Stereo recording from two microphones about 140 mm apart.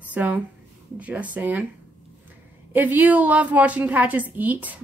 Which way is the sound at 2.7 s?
15° right (ahead or behind).